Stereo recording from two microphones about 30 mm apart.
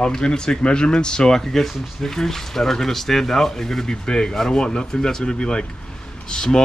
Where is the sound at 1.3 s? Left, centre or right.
Centre.